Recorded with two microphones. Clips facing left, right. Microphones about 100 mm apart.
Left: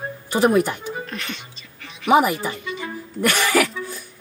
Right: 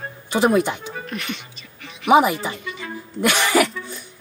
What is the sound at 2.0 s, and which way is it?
Speech, 15° right (ahead or behind).